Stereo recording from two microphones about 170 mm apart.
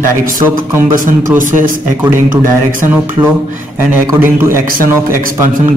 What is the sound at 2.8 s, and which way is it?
Speech, 10° right (ahead or behind).